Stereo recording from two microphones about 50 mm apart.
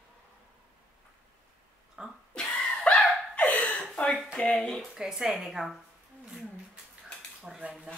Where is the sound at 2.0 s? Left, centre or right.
Centre.